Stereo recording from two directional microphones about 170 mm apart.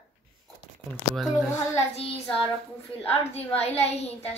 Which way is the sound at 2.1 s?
5° left (ahead or behind).